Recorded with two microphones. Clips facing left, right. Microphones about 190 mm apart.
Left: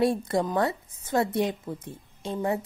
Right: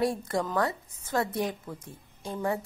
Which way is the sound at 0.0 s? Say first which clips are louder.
Left 4 dB; 25° left (ahead or behind).